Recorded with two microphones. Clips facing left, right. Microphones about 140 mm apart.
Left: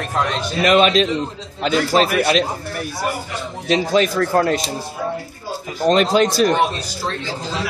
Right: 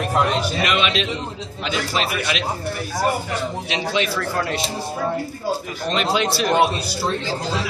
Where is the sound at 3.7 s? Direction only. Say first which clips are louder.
Left 9 dB; 40° left (ahead or behind).